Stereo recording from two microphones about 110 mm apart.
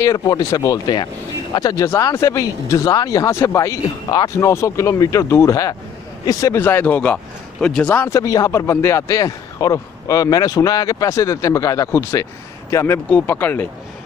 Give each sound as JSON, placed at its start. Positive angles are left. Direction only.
{"t": 0.0, "sound": "a man's voice", "side_deg": 35}
{"t": 6.6, "sound": "speech", "side_deg": 20}
{"t": 8.0, "sound": "a man's voice", "side_deg": 30}